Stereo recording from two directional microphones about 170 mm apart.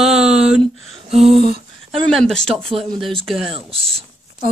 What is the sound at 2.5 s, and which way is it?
Speech, 35° right (ahead or behind).